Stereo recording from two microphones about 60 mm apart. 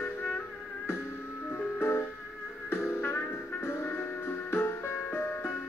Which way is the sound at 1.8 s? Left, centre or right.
Left.